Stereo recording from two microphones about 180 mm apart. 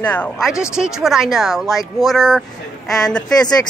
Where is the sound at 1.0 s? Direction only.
Centre (ahead or behind).